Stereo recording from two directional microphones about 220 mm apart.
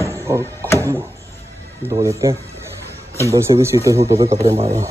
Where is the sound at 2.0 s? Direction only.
15° right (ahead or behind).